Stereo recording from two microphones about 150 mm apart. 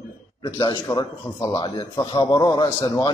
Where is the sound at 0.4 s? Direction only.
30° left (ahead or behind).